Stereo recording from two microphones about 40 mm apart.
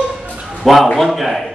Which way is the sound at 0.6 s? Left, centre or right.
Centre.